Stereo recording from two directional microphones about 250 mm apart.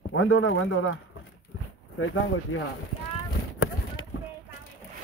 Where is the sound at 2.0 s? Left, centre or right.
Left.